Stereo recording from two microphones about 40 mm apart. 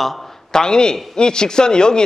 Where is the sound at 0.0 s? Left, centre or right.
Centre.